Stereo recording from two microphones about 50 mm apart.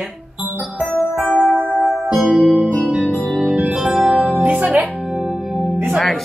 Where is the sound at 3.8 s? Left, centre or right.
Centre.